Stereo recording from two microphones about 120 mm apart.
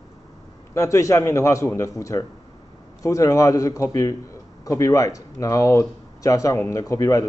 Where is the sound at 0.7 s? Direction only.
25° left (ahead or behind).